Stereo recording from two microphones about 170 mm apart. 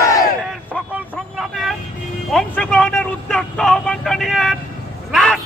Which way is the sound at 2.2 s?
5° left (ahead or behind).